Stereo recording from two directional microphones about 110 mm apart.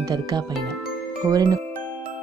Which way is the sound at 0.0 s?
35° right (ahead or behind).